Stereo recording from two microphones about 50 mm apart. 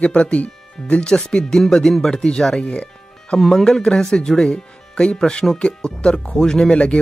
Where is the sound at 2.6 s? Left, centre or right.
Left.